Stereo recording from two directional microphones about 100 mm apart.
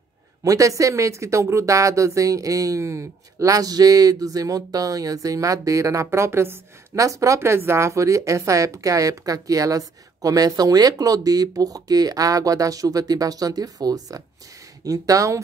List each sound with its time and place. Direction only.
0.4 s speech: 35° right (ahead or behind)